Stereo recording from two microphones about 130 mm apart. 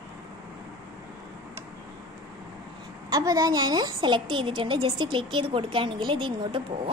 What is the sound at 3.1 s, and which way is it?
A woman's voice, 30° right (ahead or behind).